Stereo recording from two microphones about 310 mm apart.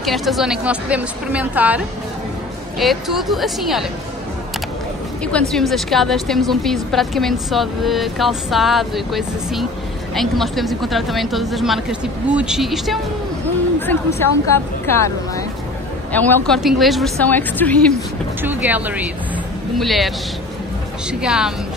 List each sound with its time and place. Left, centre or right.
0.0 s a woman's voice: centre
2.8 s a woman's voice: centre
5.5 s a woman's voice: centre
21.1 s a woman's voice: centre